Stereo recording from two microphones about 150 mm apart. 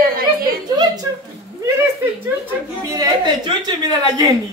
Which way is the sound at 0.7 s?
25° right (ahead or behind).